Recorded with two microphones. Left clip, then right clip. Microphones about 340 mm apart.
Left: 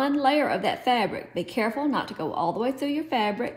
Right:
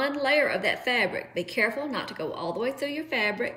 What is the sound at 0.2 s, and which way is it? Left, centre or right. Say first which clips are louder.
A woman's voice: right 1 dB; left.